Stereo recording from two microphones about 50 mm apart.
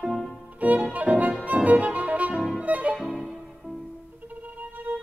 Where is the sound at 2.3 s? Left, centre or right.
Centre.